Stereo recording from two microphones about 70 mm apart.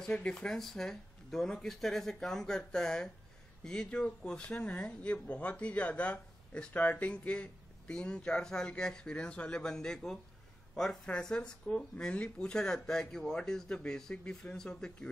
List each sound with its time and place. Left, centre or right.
0.0 s speech: centre
0.5 s speech: centre